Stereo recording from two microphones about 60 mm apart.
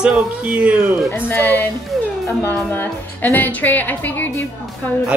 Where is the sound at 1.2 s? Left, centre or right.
Left.